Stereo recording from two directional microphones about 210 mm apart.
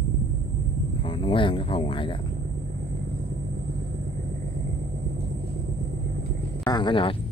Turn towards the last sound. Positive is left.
turn(degrees=25)  # may be behind; listen again after turning